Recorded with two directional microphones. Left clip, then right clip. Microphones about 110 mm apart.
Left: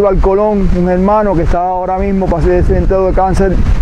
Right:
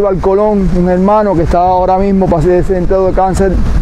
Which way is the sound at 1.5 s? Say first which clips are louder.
Right 8 dB; 40° right (ahead or behind).